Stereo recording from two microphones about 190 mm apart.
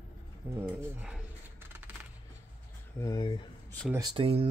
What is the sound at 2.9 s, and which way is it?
Speech, 20° left (ahead or behind).